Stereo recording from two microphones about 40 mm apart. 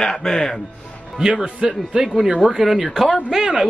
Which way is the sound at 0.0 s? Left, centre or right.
Centre.